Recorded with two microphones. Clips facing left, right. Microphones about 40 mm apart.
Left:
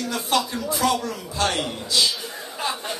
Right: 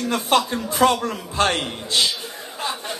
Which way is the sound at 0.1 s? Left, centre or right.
Right.